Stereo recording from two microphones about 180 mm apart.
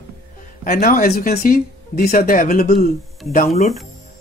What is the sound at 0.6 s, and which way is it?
Speech, 50° left (ahead or behind).